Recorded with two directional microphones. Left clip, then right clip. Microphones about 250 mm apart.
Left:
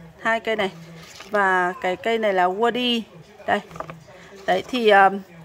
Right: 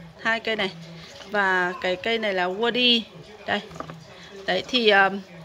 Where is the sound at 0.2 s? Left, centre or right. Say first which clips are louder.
Left 2 dB; centre.